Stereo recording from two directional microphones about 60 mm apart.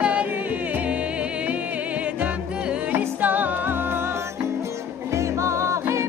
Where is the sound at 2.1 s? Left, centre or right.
Right.